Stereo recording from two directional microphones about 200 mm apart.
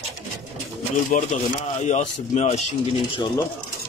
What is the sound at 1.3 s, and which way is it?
Speech, 40° left (ahead or behind).